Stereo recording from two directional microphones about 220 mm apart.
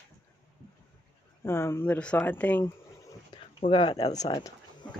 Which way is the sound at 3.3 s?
25° left (ahead or behind).